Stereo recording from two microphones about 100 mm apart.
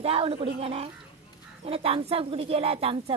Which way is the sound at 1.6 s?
70° right (ahead or behind).